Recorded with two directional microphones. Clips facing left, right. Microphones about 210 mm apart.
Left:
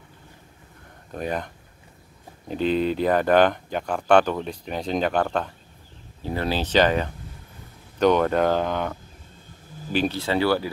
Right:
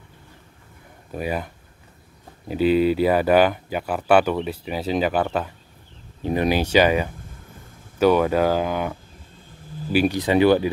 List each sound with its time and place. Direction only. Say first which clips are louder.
1.1 s speech: right 2 dB; 5° right (ahead or behind)
6.2 s speech: right 5 dB; 15° right (ahead or behind)
9.9 s speech: right 5 dB; 15° right (ahead or behind)